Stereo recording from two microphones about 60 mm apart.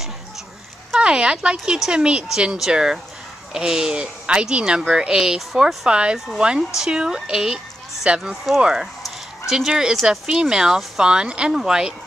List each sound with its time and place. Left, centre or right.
0.9 s speech: centre
5.9 s speech: centre
9.0 s dog: centre
10.0 s speech: centre